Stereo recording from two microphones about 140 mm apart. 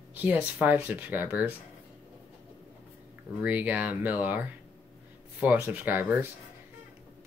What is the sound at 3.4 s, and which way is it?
Speech, 10° right (ahead or behind).